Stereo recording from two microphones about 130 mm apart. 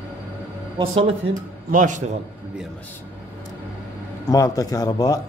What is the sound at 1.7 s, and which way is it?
Speech, 75° right (ahead or behind).